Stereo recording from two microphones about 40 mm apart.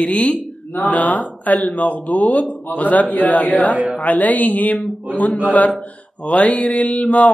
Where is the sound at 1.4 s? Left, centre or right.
Left.